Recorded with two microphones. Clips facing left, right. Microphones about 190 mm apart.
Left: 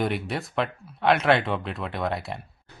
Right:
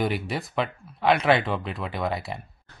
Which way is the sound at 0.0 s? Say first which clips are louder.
Even; centre (ahead or behind).